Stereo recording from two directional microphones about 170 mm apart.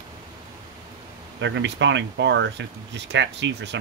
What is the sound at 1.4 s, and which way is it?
Speech, 90° right.